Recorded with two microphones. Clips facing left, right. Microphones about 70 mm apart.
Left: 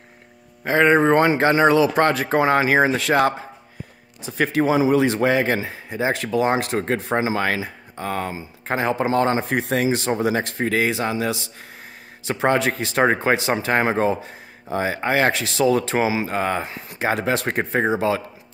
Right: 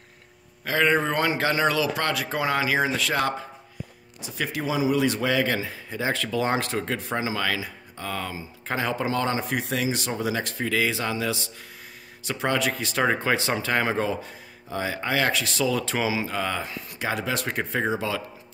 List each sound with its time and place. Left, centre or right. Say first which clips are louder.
0.7 s speech: left 7 dB; left
6.8 s speech: left 6 dB; left